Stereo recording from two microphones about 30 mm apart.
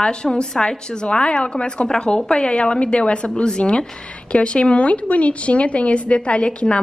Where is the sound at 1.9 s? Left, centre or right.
Left.